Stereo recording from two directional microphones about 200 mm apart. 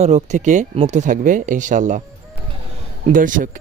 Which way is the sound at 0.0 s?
35° right (ahead or behind).